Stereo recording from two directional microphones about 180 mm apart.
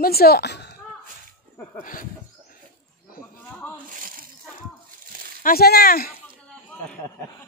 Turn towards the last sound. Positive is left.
turn(degrees=55)  # may be behind; listen again after turning